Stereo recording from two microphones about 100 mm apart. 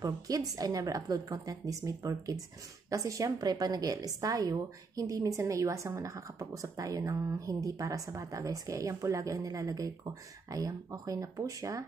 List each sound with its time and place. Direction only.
0.0 s a woman's voice: 35° right (ahead or behind)